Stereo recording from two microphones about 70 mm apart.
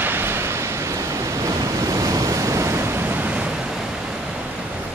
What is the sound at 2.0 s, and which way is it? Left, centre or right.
Waves, right.